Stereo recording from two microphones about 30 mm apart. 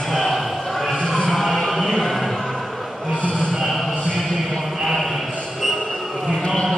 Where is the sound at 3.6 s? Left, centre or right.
Centre.